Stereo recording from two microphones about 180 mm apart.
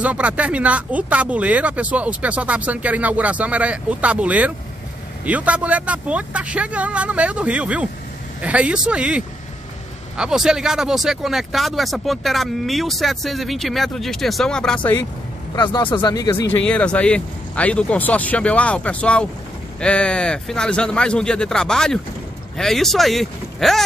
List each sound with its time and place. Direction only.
0.0 s speech: 5° right (ahead or behind); by 15.0 s 10° left (ahead or behind)
15.5 s speech: 25° left (ahead or behind)
16.6 s speech: 5° left (ahead or behind)